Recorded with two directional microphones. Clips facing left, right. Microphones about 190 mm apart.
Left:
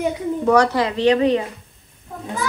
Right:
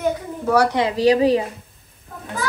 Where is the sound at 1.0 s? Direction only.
35° right (ahead or behind).